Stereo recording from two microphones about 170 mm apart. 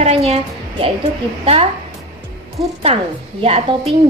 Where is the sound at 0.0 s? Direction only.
35° right (ahead or behind).